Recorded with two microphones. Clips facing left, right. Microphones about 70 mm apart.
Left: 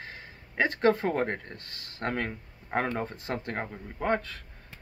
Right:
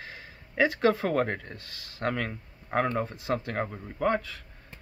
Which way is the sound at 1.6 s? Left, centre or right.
Left.